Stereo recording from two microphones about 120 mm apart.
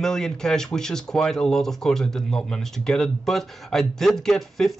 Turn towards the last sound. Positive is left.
turn(degrees=5)  # may be behind; listen again after turning